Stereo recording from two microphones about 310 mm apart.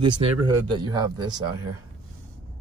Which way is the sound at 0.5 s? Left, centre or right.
Centre.